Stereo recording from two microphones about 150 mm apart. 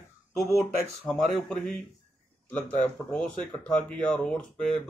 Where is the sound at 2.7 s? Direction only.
10° left (ahead or behind).